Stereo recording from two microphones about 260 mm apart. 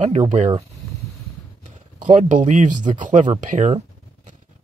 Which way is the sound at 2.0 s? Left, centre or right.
Right.